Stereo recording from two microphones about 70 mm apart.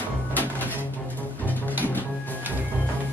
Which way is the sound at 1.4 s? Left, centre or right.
Left.